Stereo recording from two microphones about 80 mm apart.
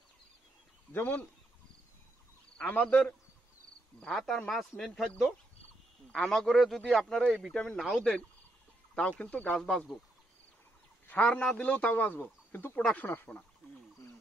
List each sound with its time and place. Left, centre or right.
0.9 s speech: left
2.5 s speech: centre
4.0 s speech: centre
6.1 s speech: centre
9.2 s speech: centre
11.1 s speech: centre